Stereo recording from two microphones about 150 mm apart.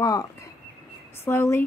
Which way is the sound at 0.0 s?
25° left (ahead or behind).